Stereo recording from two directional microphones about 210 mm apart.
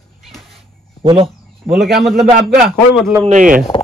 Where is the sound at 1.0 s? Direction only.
25° right (ahead or behind).